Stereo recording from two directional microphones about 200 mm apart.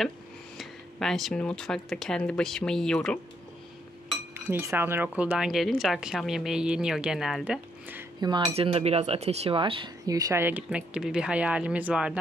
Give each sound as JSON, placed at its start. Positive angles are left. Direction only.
{"t": 0.6, "sound": "speech", "side_deg": 0}
{"t": 4.3, "sound": "speech", "side_deg": -10}
{"t": 8.2, "sound": "cutlery", "side_deg": -20}